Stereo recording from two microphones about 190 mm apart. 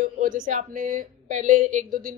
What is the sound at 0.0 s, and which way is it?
Speech, 45° right (ahead or behind).